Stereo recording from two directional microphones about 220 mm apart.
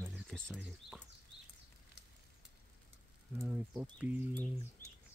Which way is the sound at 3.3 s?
10° right (ahead or behind).